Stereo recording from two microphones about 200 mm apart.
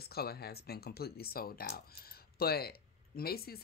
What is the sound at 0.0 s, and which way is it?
Speech, 50° left (ahead or behind).